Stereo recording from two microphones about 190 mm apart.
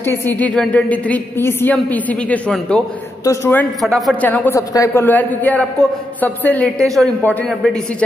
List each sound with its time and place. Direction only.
0.0 s a woman's voice: 10° left (ahead or behind)
3.8 s a woman's voice: centre (ahead or behind)